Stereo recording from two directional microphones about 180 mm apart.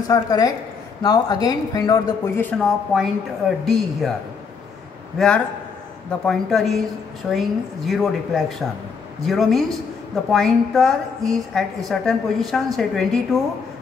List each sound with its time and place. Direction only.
0.1 s speech: 20° left (ahead or behind)
2.6 s a woman's voice: centre (ahead or behind)
5.1 s a woman's voice: centre (ahead or behind)